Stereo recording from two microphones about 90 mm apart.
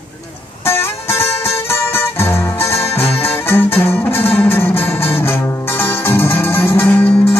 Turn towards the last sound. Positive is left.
turn(degrees=20)  # may be behind; listen again after turning